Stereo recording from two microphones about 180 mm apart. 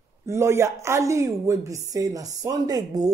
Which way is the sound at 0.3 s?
15° right (ahead or behind).